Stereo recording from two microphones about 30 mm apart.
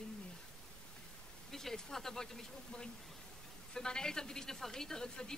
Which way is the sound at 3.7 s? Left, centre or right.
Left.